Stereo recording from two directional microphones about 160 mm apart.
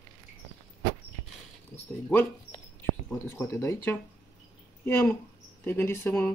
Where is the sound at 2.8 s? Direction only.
15° left (ahead or behind).